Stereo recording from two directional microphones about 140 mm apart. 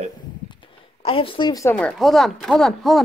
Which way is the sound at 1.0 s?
40° left (ahead or behind).